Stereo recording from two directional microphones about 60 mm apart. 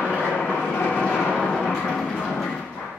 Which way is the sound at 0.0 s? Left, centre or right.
Left.